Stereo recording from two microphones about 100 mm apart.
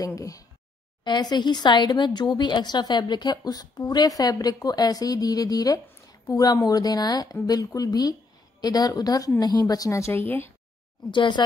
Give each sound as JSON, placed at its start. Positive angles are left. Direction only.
{"t": 0.0, "sound": "speech", "side_deg": 35}
{"t": 1.0, "sound": "a woman's voice", "side_deg": 45}
{"t": 11.1, "sound": "speech", "side_deg": 50}